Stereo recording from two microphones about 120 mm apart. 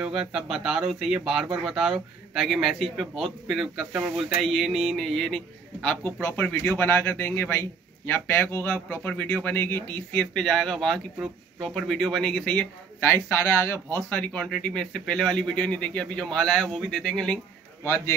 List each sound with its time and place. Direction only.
0.0 s speech: 5° right (ahead or behind)
17.8 s speech: 20° left (ahead or behind)